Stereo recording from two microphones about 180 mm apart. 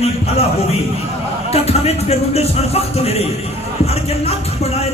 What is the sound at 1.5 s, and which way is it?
Speech, 35° left (ahead or behind).